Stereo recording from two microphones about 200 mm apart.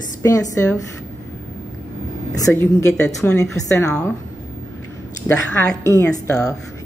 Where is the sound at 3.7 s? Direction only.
5° left (ahead or behind).